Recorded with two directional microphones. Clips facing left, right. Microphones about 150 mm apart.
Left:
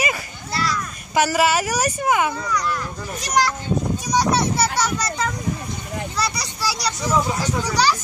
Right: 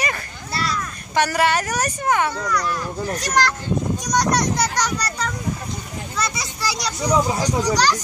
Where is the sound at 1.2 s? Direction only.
5° left (ahead or behind).